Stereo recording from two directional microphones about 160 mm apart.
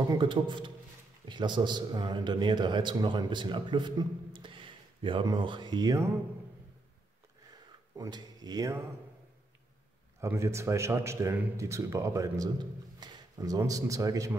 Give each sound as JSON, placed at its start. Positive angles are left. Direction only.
{"t": 0.1, "sound": "a man's voice", "side_deg": -30}
{"t": 7.9, "sound": "speech", "side_deg": -25}
{"t": 10.2, "sound": "speech", "side_deg": -15}